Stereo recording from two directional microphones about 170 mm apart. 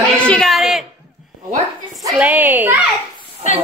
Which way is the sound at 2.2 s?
10° right (ahead or behind).